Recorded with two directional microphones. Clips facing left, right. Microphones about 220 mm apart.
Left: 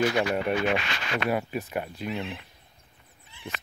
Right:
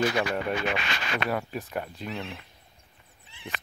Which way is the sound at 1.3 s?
10° left (ahead or behind).